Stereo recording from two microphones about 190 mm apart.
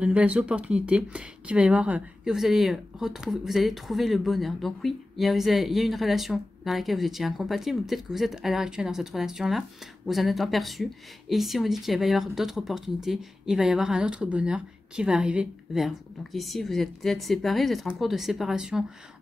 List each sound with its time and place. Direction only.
0.0 s speech: 5° right (ahead or behind)